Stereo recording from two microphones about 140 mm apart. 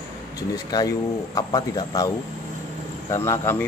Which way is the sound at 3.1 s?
20° left (ahead or behind).